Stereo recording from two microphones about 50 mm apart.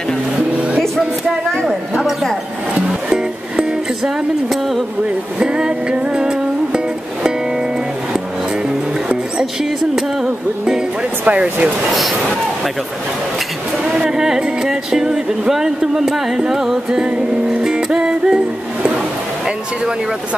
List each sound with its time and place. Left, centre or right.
1.7 s speech: centre
3.1 s music: centre
5.4 s music: centre
11.2 s speech: right
14.1 s speech: centre
17.6 s music: centre